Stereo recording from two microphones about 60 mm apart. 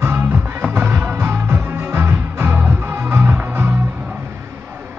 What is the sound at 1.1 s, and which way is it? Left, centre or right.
Music, right.